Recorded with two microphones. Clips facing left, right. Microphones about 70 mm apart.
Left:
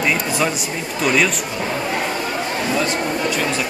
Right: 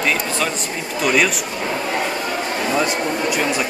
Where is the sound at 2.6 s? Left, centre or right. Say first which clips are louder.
Right 2 dB; centre.